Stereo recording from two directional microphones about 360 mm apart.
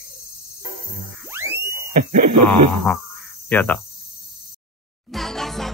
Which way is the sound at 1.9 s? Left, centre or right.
Right.